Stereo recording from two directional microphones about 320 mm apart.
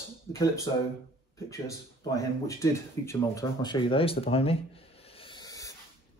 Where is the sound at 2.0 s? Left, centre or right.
Centre.